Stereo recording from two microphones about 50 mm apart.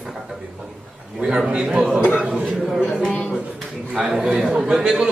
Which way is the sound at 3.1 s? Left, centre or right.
Left.